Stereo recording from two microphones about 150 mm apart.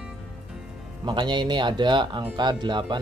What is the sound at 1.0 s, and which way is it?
Speech, 30° right (ahead or behind).